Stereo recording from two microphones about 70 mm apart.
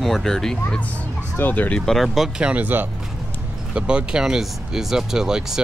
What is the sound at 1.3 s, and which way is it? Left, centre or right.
Speech, left.